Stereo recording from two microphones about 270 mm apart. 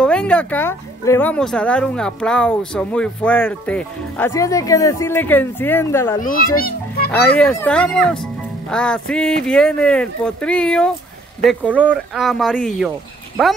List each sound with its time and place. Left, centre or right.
0.0 s speech: centre
6.2 s a child's voice: left
7.3 s speech: centre